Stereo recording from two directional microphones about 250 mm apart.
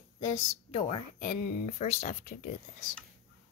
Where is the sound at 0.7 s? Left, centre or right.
Left.